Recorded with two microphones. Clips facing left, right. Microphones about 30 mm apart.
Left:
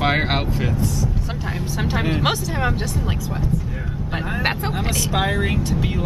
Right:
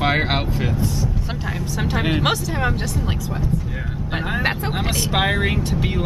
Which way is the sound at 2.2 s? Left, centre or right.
Centre.